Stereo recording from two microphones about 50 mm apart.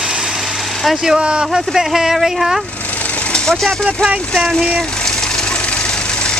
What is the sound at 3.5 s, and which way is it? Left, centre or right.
Speech, centre.